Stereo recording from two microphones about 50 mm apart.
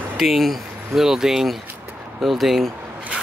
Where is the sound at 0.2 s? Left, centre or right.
Centre.